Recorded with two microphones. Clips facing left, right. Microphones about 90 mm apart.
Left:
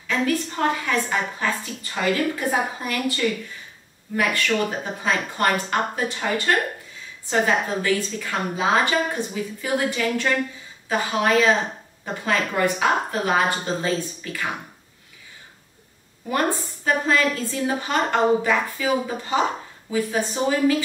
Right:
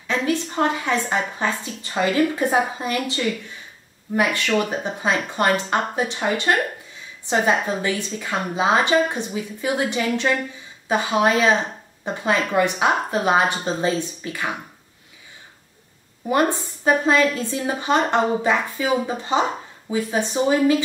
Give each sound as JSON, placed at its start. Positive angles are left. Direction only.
{"t": 0.0, "sound": "a woman's voice", "side_deg": -20}
{"t": 16.3, "sound": "a woman's voice", "side_deg": -20}